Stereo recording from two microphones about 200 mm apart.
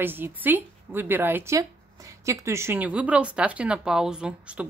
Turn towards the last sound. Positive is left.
turn(degrees=-5)  # may be behind; listen again after turning